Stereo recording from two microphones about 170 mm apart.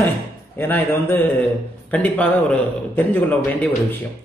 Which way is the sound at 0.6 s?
10° left (ahead or behind).